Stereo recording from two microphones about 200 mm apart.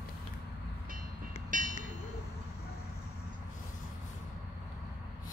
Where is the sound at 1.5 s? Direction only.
40° right (ahead or behind).